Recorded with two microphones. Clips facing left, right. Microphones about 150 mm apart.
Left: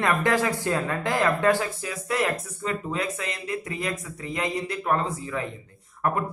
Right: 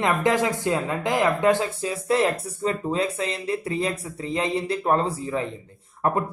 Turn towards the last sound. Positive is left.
turn(degrees=-25)  # may be behind; listen again after turning